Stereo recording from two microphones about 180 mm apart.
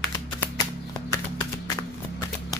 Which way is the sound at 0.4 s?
20° left (ahead or behind).